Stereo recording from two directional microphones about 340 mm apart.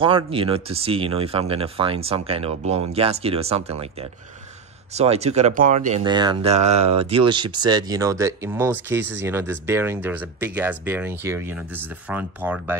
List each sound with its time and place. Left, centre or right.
0.0 s speech: centre